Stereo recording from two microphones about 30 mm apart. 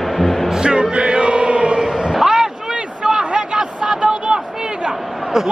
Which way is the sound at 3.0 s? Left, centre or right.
Right.